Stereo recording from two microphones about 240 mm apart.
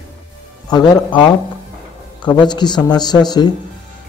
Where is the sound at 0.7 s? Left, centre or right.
Centre.